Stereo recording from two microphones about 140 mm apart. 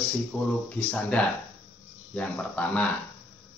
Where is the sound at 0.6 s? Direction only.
10° left (ahead or behind).